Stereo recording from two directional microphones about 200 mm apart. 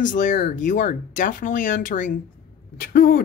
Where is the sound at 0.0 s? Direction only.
40° left (ahead or behind).